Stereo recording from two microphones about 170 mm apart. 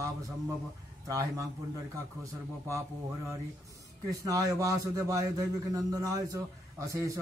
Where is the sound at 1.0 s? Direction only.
20° right (ahead or behind).